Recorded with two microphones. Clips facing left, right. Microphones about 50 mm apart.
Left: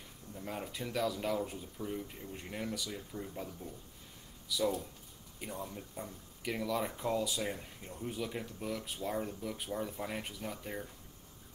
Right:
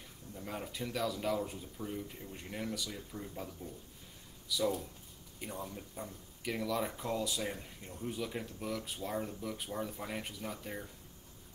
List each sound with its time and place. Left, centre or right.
0.4 s speech: centre
4.6 s speech: centre